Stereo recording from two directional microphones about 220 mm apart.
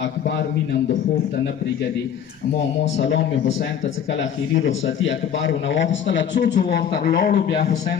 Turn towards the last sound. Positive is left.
turn(degrees=45)  # may be behind; listen again after turning